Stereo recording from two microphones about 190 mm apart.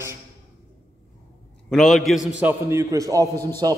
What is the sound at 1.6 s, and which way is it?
A man's voice, centre (ahead or behind).